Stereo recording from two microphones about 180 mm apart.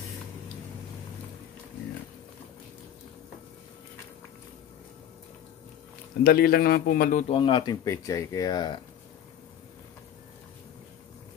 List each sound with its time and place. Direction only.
6.2 s a man's voice: 55° left (ahead or behind); by 8.7 s 20° left (ahead or behind)